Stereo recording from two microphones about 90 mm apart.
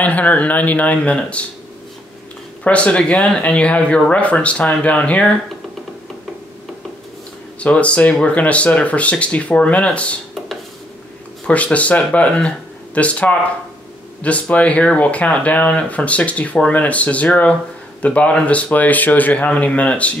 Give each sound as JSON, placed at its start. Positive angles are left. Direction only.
{"t": 0.0, "sound": "speech", "side_deg": 15}
{"t": 2.6, "sound": "speech", "side_deg": 15}
{"t": 7.6, "sound": "speech", "side_deg": 15}
{"t": 11.4, "sound": "speech", "side_deg": 15}